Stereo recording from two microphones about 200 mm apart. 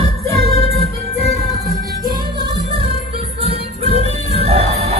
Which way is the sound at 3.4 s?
30° right (ahead or behind).